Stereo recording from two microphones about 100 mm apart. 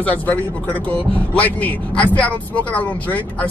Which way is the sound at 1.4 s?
15° left (ahead or behind).